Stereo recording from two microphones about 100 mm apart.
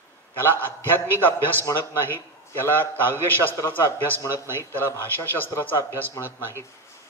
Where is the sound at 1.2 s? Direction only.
20° left (ahead or behind).